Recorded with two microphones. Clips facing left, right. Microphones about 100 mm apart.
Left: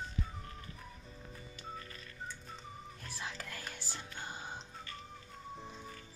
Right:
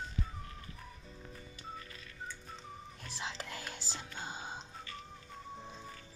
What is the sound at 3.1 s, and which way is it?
Whispering, 20° right (ahead or behind).